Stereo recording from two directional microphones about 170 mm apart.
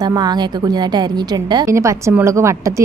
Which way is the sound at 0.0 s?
25° right (ahead or behind).